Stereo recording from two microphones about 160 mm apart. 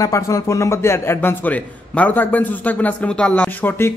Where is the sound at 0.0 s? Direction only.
20° left (ahead or behind).